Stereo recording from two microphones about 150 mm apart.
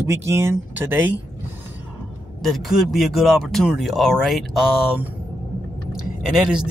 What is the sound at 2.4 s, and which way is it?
Speech, centre (ahead or behind).